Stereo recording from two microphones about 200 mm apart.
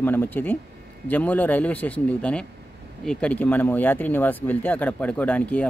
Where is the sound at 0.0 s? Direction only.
10° left (ahead or behind).